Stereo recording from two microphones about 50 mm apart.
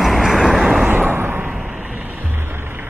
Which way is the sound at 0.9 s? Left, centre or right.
Right.